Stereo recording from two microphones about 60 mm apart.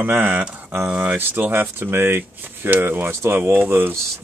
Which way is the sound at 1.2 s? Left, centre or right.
Right.